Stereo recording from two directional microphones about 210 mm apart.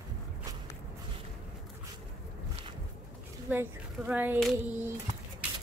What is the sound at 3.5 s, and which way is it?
Speech, 10° right (ahead or behind).